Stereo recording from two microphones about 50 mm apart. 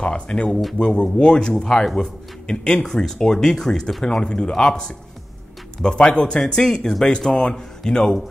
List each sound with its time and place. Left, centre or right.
0.0 s speech: centre
0.5 s speech: centre
0.7 s speech: centre